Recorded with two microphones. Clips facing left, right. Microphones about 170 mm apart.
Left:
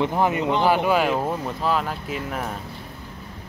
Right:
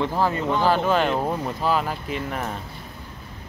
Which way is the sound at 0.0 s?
20° left (ahead or behind).